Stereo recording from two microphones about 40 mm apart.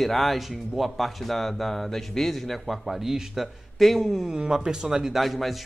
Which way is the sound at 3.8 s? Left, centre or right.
Centre.